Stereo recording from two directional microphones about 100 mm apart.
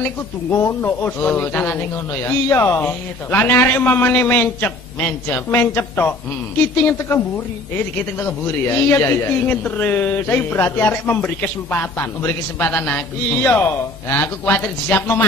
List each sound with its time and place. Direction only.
0.5 s a man's voice: 25° left (ahead or behind)
8.2 s a man's voice: 25° left (ahead or behind)
11.1 s a man's voice: 5° left (ahead or behind)
11.7 s a man's voice: 20° left (ahead or behind)